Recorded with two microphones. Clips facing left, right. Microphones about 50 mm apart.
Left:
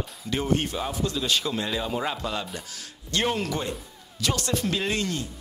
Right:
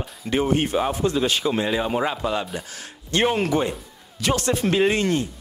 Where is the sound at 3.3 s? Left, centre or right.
Right.